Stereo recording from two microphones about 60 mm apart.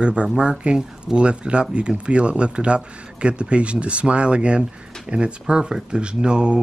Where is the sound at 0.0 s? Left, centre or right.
Centre.